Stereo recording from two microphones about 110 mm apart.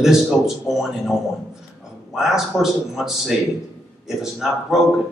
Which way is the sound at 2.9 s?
5° right (ahead or behind).